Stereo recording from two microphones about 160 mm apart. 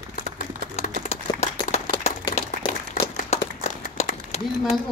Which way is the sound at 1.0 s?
45° left (ahead or behind).